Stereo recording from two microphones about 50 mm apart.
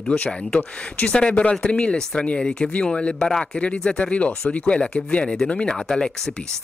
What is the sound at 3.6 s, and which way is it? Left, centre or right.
Speech, left.